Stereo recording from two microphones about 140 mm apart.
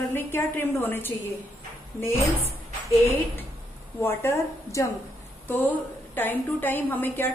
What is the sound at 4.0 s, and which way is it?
A woman's voice, 20° left (ahead or behind).